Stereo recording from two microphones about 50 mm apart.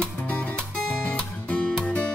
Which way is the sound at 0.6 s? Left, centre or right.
Left.